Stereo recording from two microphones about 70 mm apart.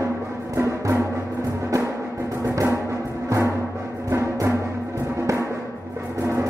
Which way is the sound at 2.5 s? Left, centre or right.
Right.